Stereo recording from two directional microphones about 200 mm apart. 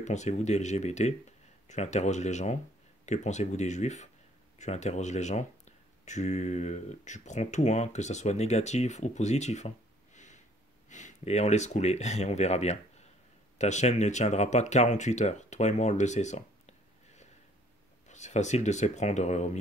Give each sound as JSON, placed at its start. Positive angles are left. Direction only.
{"t": 0.0, "sound": "speech", "side_deg": 35}
{"t": 10.1, "sound": "sniff", "side_deg": 35}
{"t": 10.9, "sound": "speech", "side_deg": 35}